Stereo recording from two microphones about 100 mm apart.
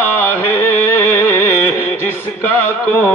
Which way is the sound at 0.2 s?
20° left (ahead or behind).